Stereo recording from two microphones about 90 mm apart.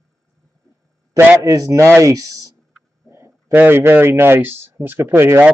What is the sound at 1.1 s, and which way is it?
A man's voice, 30° right (ahead or behind).